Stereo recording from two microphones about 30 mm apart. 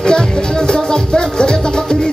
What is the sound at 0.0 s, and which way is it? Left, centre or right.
Music, left.